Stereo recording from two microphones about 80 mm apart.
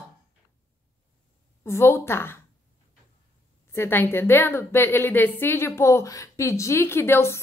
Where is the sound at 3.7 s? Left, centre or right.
Left.